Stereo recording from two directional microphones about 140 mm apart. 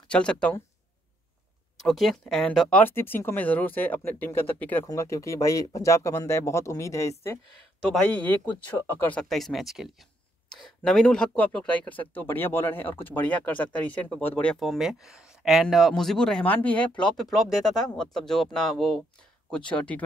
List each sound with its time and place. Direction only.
0.1 s speech: 5° left (ahead or behind)
1.8 s speech: centre (ahead or behind)
2.8 s speech: 15° left (ahead or behind)
7.9 s speech: 10° left (ahead or behind)
9.2 s speech: centre (ahead or behind)